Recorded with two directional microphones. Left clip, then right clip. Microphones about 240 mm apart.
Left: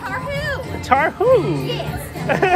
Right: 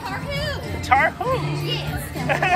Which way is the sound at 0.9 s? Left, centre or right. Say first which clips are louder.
Left 4 dB; left.